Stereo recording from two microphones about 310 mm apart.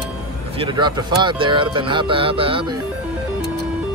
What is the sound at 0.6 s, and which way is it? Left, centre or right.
Speech, centre.